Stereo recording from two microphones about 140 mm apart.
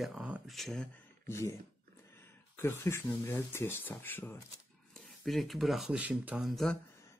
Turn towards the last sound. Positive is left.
turn(degrees=0)  # may be behind; listen again after turning